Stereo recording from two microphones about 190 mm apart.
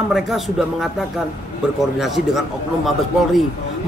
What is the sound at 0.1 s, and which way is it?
Speech, centre (ahead or behind).